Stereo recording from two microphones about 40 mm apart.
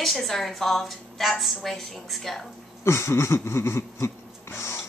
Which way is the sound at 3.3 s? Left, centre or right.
Left.